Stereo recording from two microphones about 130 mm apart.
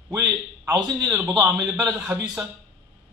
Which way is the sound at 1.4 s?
5° right (ahead or behind).